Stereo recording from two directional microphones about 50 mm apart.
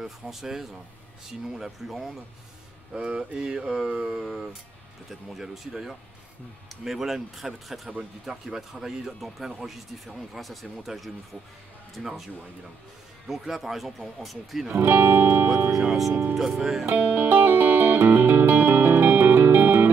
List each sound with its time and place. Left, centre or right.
0.0 s speech: centre
2.9 s speech: centre
13.3 s speech: centre
14.7 s speech: right
15.7 s speech: centre
16.9 s music: right